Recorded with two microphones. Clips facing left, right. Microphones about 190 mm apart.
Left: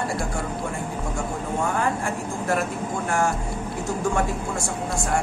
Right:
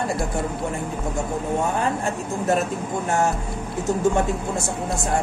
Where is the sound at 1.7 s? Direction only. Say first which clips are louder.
Right 1 dB; 20° right (ahead or behind).